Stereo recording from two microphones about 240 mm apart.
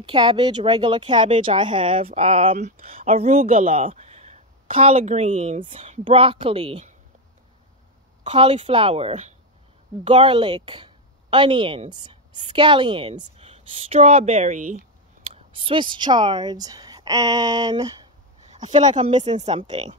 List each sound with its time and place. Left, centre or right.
0.1 s speech: centre
8.2 s a woman's voice: right
15.5 s a woman's voice: right
18.5 s speech: right